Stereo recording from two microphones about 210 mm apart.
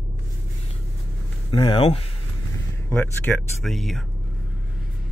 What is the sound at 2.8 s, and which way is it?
Speech, 10° left (ahead or behind).